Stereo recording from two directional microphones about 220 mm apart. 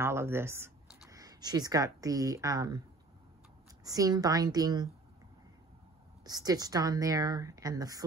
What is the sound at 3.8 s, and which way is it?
A woman's voice, 15° right (ahead or behind).